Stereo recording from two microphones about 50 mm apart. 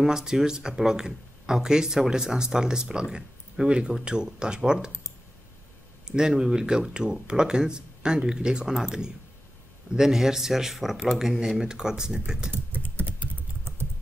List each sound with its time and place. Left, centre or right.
0.0 s speech: centre
6.0 s speech: centre
12.9 s typing: right